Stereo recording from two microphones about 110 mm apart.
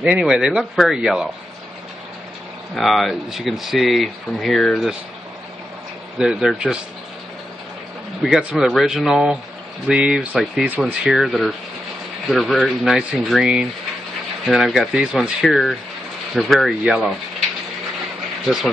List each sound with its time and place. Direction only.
0.0 s speech: 10° right (ahead or behind)
2.7 s speech: centre (ahead or behind)
6.1 s speech: 5° right (ahead or behind)
8.4 s speech: 5° right (ahead or behind)
11.1 s speech: centre (ahead or behind)
18.4 s speech: centre (ahead or behind)